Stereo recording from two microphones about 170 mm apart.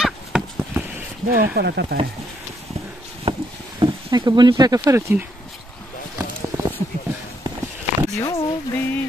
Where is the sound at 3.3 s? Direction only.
35° right (ahead or behind).